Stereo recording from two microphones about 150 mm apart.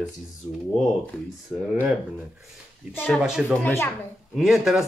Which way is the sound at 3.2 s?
5° right (ahead or behind).